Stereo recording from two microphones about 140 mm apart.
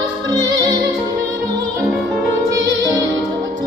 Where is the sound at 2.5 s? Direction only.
25° right (ahead or behind).